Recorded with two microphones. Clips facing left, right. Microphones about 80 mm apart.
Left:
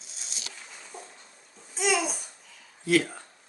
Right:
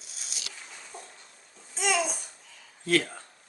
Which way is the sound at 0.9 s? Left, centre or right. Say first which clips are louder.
Left 1 dB; centre.